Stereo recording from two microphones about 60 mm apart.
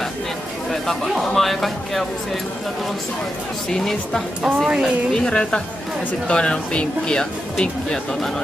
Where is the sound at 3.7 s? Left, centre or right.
Centre.